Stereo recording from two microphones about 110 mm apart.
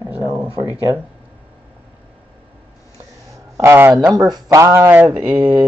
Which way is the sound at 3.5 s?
25° right (ahead or behind).